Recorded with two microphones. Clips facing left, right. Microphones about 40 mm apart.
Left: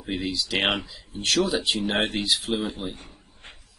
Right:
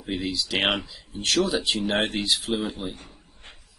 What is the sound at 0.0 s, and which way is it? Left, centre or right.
A man's voice, centre.